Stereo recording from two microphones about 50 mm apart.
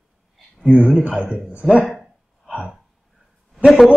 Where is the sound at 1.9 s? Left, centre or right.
Centre.